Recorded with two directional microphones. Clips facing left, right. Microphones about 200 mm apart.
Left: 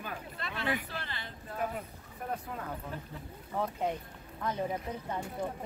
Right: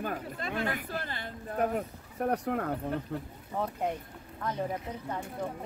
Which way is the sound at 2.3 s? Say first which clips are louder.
Right 8 dB; 65° right (ahead or behind).